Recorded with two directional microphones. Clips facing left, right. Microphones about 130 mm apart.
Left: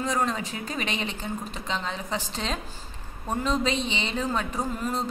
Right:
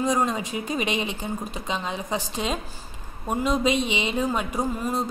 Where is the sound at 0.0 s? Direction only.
15° right (ahead or behind).